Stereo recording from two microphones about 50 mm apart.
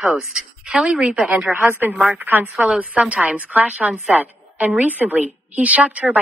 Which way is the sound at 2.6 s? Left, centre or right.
Right.